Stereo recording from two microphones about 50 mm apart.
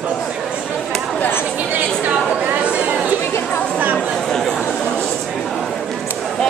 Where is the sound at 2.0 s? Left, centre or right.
Right.